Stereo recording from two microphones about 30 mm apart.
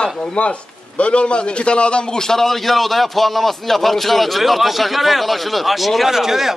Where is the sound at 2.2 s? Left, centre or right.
Centre.